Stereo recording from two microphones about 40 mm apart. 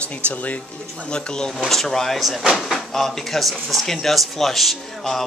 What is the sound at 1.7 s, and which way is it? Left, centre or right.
Speech, centre.